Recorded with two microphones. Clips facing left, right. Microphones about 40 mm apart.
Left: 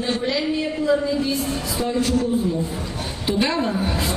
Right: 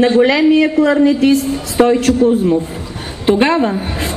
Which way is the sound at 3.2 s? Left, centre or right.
Right.